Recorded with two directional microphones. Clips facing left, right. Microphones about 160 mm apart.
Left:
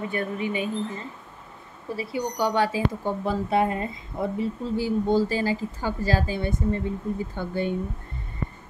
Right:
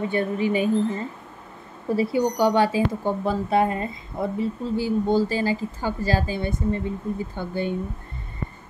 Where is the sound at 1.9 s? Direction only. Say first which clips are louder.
Right 7 dB; 35° right (ahead or behind).